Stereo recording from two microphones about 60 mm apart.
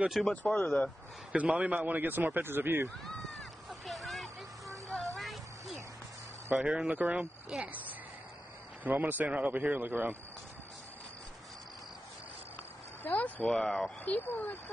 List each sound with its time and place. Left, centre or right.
0.3 s speech: centre
0.6 s speech: left
1.3 s speech: right
3.8 s a sound: centre
6.5 s speech: centre
8.8 s speech: right
13.0 s speech: left
13.5 s speech: centre
14.0 s speech: left